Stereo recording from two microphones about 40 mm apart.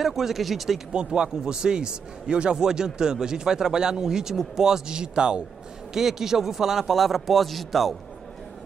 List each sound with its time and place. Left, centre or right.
0.0 s a man's voice: centre
0.9 s a man's voice: right; by 7.9 s centre